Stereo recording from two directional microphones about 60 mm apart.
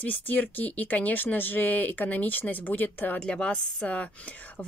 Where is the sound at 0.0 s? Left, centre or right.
Left.